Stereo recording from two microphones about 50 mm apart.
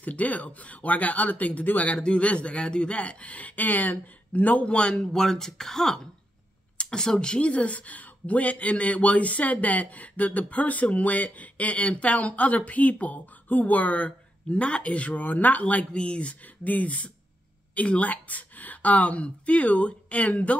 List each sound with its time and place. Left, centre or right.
0.0 s speech: left
2.0 s speech: left
4.6 s speech: left